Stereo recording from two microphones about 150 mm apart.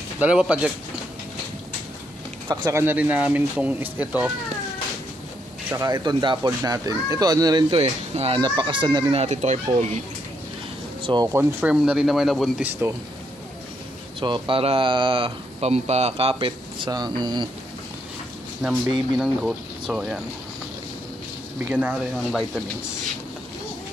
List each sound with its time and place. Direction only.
0.2 s speech: 5° right (ahead or behind)
2.4 s speech: 20° right (ahead or behind)
5.7 s speech: 20° right (ahead or behind)
7.7 s a child's voice: 45° right (ahead or behind)
8.4 s speech: 30° right (ahead or behind)
9.1 s a child's voice: 45° right (ahead or behind)
11.0 s a sound: 35° right (ahead or behind)
11.3 s speech: 5° right (ahead or behind)
14.2 s speech: 30° right (ahead or behind)
18.6 s speech: 10° right (ahead or behind)
21.6 s speech: 10° right (ahead or behind)